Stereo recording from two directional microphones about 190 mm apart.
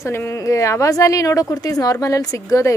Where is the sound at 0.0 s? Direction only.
15° left (ahead or behind).